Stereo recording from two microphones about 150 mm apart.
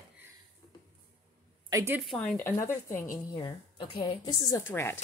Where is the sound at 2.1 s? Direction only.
5° left (ahead or behind).